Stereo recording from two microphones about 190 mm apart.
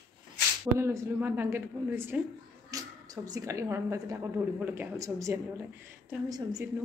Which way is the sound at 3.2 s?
15° right (ahead or behind).